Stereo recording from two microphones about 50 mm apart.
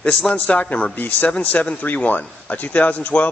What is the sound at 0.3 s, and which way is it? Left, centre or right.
A man's voice, left.